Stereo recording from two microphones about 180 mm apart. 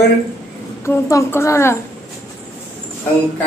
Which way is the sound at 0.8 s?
15° left (ahead or behind).